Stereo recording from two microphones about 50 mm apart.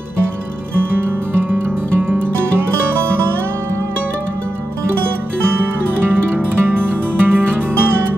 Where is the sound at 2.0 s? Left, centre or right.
Right.